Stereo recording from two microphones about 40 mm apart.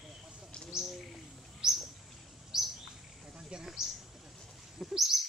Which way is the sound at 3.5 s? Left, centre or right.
Right.